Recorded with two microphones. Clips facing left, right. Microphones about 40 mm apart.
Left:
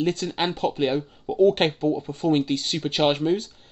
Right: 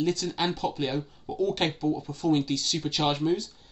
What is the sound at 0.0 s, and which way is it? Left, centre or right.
Speech, left.